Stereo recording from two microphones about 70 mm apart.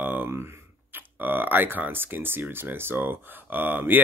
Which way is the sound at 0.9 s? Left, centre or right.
Right.